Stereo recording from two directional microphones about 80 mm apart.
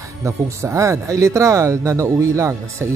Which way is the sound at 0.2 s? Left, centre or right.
Right.